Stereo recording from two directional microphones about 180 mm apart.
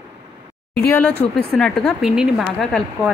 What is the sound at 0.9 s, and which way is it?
A woman's voice, 10° left (ahead or behind).